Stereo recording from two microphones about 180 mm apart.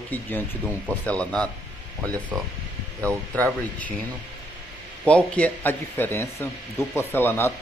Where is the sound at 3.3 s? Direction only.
10° left (ahead or behind).